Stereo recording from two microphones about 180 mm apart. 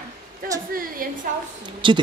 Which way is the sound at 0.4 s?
50° right (ahead or behind).